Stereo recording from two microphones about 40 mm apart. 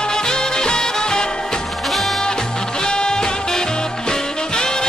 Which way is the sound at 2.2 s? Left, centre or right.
Centre.